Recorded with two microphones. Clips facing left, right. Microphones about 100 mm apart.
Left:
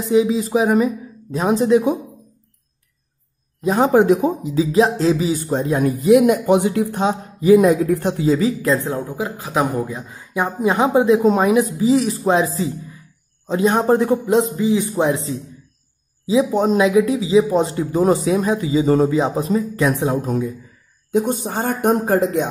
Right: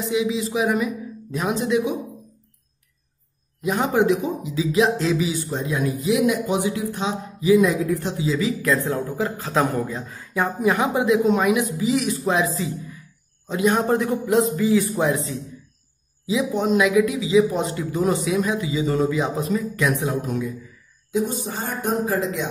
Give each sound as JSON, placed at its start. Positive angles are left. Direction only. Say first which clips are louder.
{"t": 0.0, "sound": "speech", "louder": "left 6 dB", "side_deg": 40}
{"t": 3.6, "sound": "speech", "louder": "left 6 dB", "side_deg": 35}
{"t": 8.4, "sound": "speech", "louder": "left 4 dB", "side_deg": 35}
{"t": 8.7, "sound": "a man's voice", "louder": "left 1 dB", "side_deg": 20}
{"t": 21.1, "sound": "speech", "louder": "left 5 dB", "side_deg": 60}